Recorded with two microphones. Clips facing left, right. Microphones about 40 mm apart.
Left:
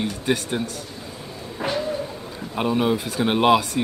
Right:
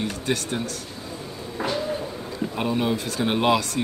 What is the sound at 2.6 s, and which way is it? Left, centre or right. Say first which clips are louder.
Speech: left 4 dB; centre.